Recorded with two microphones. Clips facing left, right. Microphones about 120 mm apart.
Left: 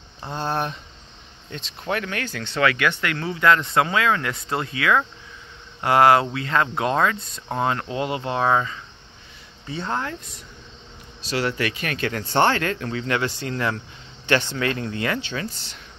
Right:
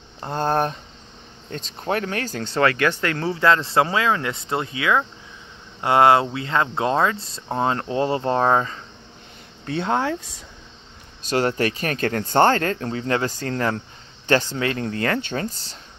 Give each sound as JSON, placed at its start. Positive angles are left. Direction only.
{"t": 0.2, "sound": "speech", "side_deg": -45}
{"t": 9.7, "sound": "speech", "side_deg": -75}
{"t": 11.2, "sound": "speech", "side_deg": -45}